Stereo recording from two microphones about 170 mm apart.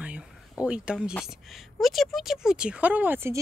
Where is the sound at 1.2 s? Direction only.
Centre (ahead or behind).